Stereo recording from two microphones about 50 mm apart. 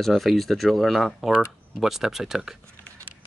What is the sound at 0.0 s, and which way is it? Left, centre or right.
Speech, centre.